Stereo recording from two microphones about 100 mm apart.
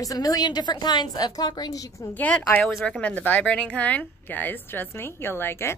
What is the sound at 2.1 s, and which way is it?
A woman's voice, 15° left (ahead or behind).